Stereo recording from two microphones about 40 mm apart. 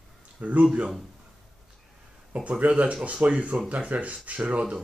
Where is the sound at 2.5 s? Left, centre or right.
Right.